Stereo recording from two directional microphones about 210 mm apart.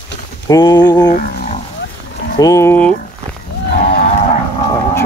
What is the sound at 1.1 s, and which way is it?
Roaring cats, 35° left (ahead or behind).